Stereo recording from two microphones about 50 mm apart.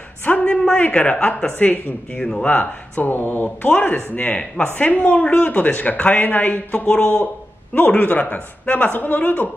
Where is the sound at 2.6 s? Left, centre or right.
Left.